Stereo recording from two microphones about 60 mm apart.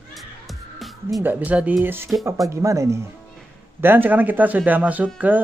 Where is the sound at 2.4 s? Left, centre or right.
Right.